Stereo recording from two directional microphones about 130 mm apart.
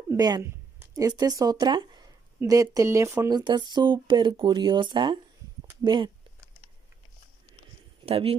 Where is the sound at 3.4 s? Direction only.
35° right (ahead or behind).